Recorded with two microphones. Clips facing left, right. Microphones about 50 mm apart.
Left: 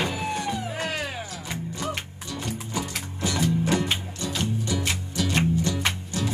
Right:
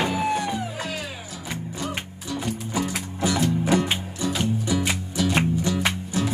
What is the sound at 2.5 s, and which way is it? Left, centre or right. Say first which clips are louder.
Music: right 4 dB; centre.